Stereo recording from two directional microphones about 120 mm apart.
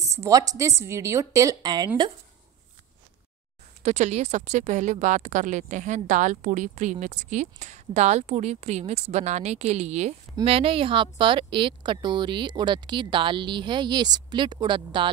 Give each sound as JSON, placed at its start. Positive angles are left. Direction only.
{"t": 0.1, "sound": "a woman's voice", "side_deg": -25}
{"t": 3.8, "sound": "speech", "side_deg": -70}
{"t": 10.4, "sound": "speech", "side_deg": -50}